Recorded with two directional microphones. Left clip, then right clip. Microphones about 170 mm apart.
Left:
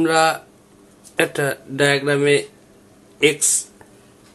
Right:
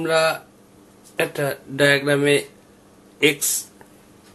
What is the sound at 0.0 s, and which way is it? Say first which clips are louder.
Speech: left 3 dB; 30° left (ahead or behind).